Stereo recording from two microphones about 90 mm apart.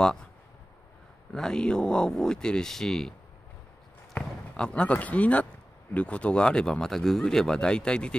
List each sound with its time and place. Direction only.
1.3 s speech: 10° left (ahead or behind)